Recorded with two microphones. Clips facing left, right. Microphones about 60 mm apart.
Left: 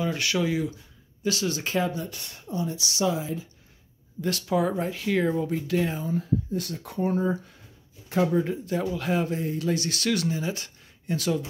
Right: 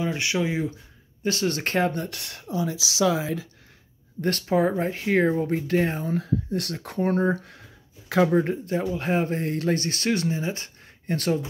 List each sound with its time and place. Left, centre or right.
0.0 s speech: right
1.2 s speech: right
1.5 s speech: right
4.2 s speech: right
8.3 s speech: right
8.7 s speech: right
9.4 s speech: right